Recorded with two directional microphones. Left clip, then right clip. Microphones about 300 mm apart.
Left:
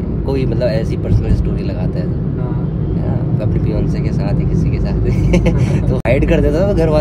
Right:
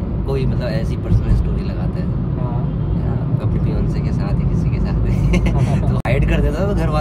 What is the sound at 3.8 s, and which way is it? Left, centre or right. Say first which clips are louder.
Speech: left 4 dB; centre.